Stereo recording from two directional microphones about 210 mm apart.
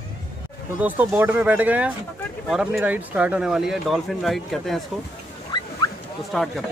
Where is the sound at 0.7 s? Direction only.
5° right (ahead or behind).